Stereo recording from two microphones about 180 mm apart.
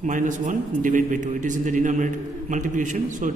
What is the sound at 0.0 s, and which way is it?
A man's voice, 45° right (ahead or behind).